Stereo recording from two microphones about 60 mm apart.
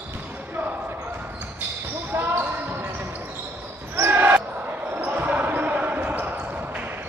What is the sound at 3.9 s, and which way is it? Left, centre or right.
Basketball bounce, right.